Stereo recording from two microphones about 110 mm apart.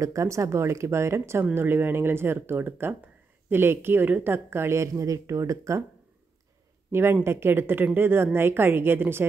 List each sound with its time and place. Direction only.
0.0 s speech: 30° right (ahead or behind)
6.9 s speech: 20° right (ahead or behind)